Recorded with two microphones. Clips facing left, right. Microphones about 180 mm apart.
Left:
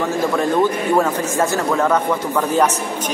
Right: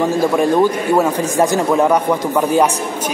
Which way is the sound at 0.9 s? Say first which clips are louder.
Right 3 dB; 15° right (ahead or behind).